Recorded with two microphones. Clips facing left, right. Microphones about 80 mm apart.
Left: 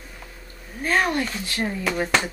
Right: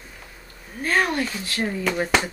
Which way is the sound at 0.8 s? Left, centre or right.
Centre.